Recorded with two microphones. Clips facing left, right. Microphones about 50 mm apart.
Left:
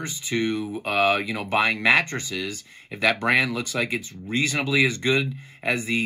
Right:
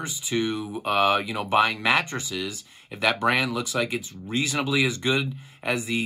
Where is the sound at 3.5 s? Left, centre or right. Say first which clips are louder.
Even; left.